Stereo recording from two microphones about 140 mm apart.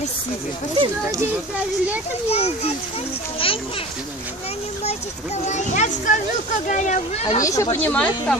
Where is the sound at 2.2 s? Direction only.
45° left (ahead or behind).